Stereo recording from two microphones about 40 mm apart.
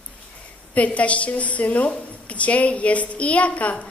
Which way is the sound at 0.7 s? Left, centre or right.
Left.